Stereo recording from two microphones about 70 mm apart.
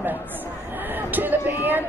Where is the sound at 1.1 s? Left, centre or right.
Right.